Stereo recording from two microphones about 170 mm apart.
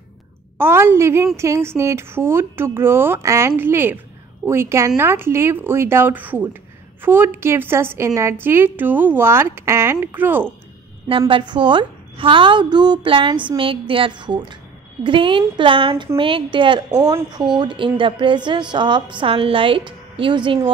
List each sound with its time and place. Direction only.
0.6 s a woman's voice: 15° right (ahead or behind)
11.1 s speech: 30° right (ahead or behind)